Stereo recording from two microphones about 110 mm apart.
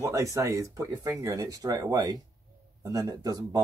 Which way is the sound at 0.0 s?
30° right (ahead or behind).